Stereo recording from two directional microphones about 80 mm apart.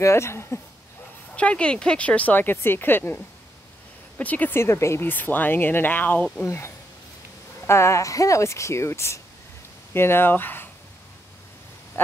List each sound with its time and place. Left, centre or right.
0.0 s speech: left
1.3 s speech: centre
4.2 s speech: left
4.6 s speech: left
6.4 s speech: left